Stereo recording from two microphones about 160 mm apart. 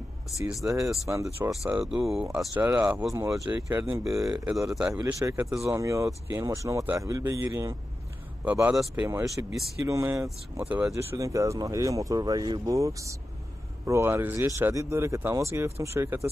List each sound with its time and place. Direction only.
0.4 s speech: 15° right (ahead or behind)
1.7 s speech: 5° right (ahead or behind)
3.1 s speech: 20° right (ahead or behind); by 4.9 s 5° right (ahead or behind)
4.9 s speech: 15° right (ahead or behind)
9.8 s speech: 20° right (ahead or behind)
10.6 s speech: 10° right (ahead or behind)